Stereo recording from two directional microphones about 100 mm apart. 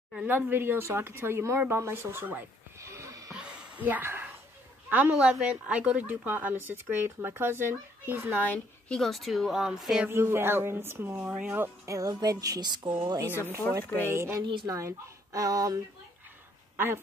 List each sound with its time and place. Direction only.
0.3 s speech: 20° right (ahead or behind)
1.7 s a sound: 25° right (ahead or behind)
3.3 s a sound: 10° right (ahead or behind)
5.4 s speech: 10° right (ahead or behind)
8.4 s a woman's voice: 15° left (ahead or behind); by 10.0 s 5° right (ahead or behind)
10.0 s speech: 25° right (ahead or behind)
11.2 s music: 10° right (ahead or behind); by 13.3 s 40° right (ahead or behind)
14.0 s speech: 25° right (ahead or behind)
14.4 s speech: 55° right (ahead or behind)
14.7 s music: 35° right (ahead or behind)
16.7 s speech: 20° right (ahead or behind)